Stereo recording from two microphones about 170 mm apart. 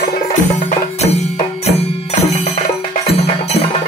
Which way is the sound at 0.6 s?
40° left (ahead or behind).